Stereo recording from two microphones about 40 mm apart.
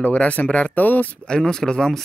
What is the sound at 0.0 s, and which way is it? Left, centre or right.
Speech, left.